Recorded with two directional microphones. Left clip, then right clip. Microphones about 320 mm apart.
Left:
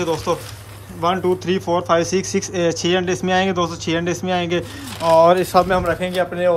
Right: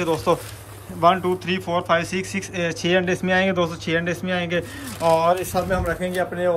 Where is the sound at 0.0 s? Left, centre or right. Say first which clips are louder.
Even; centre.